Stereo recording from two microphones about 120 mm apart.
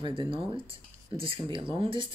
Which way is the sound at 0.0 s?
45° right (ahead or behind).